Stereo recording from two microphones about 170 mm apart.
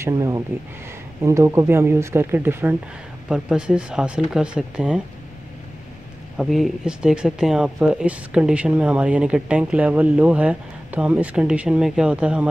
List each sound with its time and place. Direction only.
0.0 s speech: 15° right (ahead or behind)
6.3 s speech: centre (ahead or behind)